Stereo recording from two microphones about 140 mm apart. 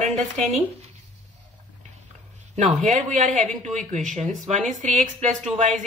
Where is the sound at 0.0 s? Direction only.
55° right (ahead or behind).